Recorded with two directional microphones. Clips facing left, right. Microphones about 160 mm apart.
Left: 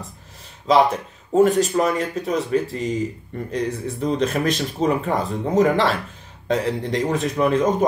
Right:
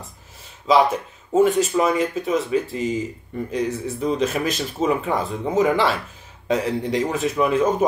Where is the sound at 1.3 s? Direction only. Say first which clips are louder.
Left 1 dB; centre (ahead or behind).